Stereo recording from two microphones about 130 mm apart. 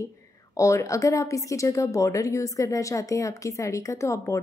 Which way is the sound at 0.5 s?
25° left (ahead or behind).